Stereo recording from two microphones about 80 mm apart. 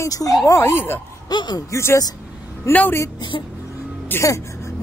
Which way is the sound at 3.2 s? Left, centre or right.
Left.